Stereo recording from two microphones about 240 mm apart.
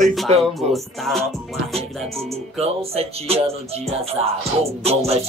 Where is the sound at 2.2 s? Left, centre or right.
Right.